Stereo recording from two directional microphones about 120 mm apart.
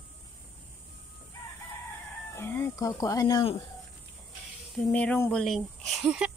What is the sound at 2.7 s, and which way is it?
Speech, 30° left (ahead or behind).